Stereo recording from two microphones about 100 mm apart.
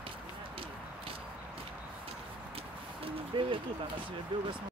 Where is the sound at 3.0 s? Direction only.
60° right (ahead or behind).